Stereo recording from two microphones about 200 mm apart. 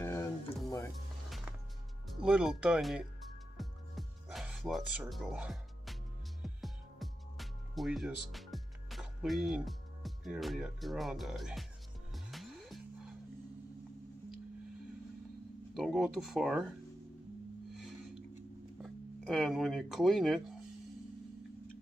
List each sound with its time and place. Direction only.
0.0 s music: 15° left (ahead or behind)
2.0 s music: 5° right (ahead or behind)
15.7 s speech: centre (ahead or behind)
17.7 s music: 5° right (ahead or behind)
18.8 s speech: centre (ahead or behind)